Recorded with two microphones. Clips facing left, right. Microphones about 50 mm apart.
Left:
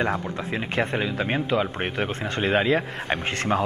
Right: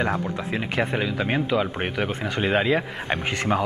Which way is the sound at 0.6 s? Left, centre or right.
Centre.